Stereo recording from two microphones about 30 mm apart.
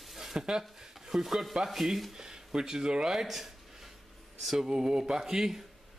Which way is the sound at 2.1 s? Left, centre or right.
Right.